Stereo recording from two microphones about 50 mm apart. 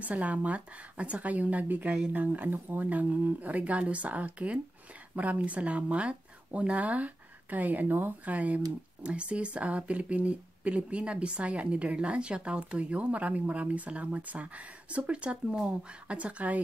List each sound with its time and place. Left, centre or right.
0.0 s speech: right